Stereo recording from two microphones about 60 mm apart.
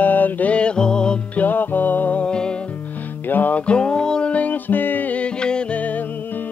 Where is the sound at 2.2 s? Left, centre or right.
Centre.